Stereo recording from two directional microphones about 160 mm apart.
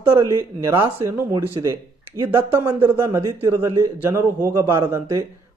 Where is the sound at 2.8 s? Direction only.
20° right (ahead or behind).